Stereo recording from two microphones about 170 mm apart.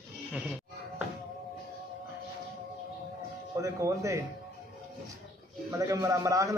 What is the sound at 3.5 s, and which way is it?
Speech, 20° right (ahead or behind).